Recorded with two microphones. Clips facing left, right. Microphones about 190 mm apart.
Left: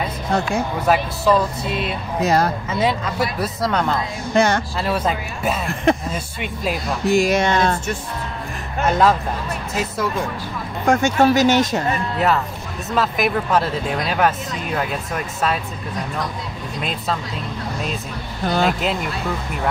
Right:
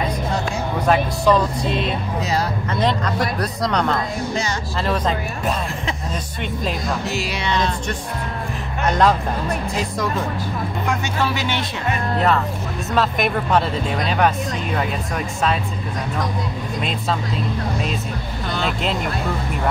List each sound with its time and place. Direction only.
0.8 s speech: 5° left (ahead or behind)
2.2 s speech: 50° left (ahead or behind)
2.7 s speech: 5° left (ahead or behind)
4.4 s speech: 60° left (ahead or behind)
4.8 s speech: 5° left (ahead or behind)
5.9 s speech: 55° left (ahead or behind)
6.4 s speech: 10° left (ahead or behind)
7.1 s speech: 50° left (ahead or behind)
8.8 s speech: 5° left (ahead or behind)
10.9 s speech: 45° left (ahead or behind)
12.9 s speech: centre (ahead or behind)
18.4 s speech: 45° left (ahead or behind)